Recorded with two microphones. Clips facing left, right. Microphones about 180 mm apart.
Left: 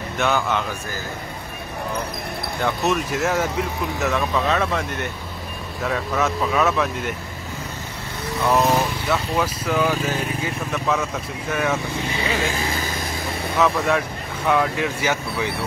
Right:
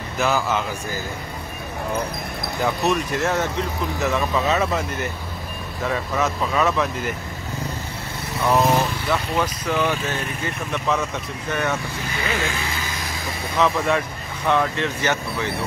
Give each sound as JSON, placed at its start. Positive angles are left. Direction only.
{"t": 0.2, "sound": "speech", "side_deg": 0}
{"t": 2.6, "sound": "speech", "side_deg": 0}
{"t": 8.4, "sound": "speech", "side_deg": 0}
{"t": 12.5, "sound": "vehicle", "side_deg": 35}
{"t": 13.6, "sound": "speech", "side_deg": 0}